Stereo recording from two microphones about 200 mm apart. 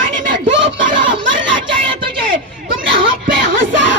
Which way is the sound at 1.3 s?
70° right (ahead or behind).